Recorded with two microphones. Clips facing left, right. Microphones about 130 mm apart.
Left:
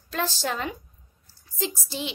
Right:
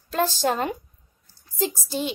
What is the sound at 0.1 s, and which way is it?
A woman's voice, 45° right (ahead or behind).